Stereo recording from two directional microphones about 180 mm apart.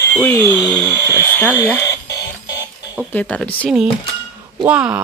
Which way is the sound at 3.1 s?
5° left (ahead or behind).